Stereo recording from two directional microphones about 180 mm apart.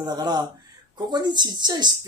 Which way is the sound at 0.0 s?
20° right (ahead or behind).